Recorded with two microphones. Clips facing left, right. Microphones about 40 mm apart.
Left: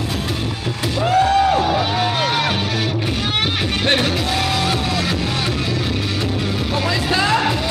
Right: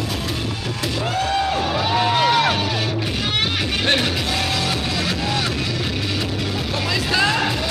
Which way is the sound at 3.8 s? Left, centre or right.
Centre.